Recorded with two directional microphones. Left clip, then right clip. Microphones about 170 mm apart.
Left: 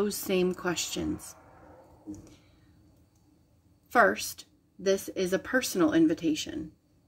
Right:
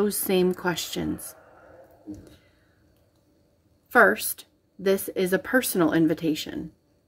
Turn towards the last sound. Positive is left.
turn(degrees=-25)  # may be behind; listen again after turning